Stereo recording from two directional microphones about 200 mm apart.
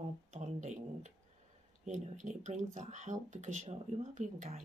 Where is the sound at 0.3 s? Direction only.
35° right (ahead or behind).